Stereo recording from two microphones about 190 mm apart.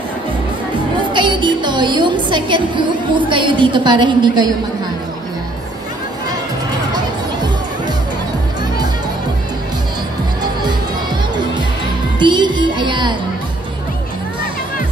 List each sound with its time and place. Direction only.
0.9 s a woman's voice: 25° right (ahead or behind)
12.2 s music: 25° right (ahead or behind)